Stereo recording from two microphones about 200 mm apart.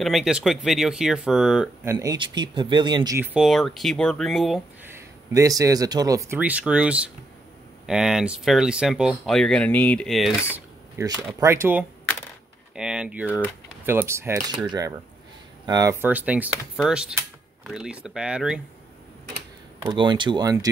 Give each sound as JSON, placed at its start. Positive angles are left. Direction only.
{"t": 0.0, "sound": "speech", "side_deg": 0}
{"t": 2.0, "sound": "speech", "side_deg": -20}
{"t": 3.3, "sound": "speech", "side_deg": 0}
{"t": 4.8, "sound": "speech", "side_deg": -15}
{"t": 11.0, "sound": "speech", "side_deg": -20}
{"t": 19.9, "sound": "speech", "side_deg": -25}